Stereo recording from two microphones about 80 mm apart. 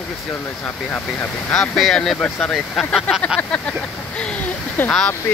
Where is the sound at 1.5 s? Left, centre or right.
Centre.